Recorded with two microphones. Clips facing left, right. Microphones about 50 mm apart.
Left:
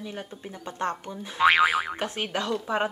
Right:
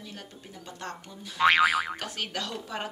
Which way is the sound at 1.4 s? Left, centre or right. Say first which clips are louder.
Left 2 dB; centre.